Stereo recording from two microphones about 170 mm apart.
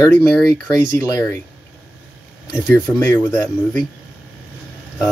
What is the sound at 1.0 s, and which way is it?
Speech, 20° left (ahead or behind).